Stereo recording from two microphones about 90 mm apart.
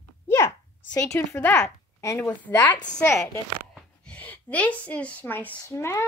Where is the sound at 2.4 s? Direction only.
20° left (ahead or behind).